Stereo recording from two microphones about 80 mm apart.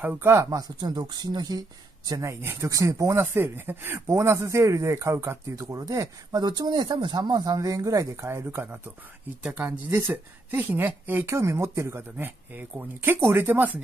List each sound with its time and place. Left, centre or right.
0.0 s speech: right
0.3 s speech: right
2.2 s speech: right
3.2 s speech: right
6.4 s speech: right
8.3 s speech: right
11.3 s speech: right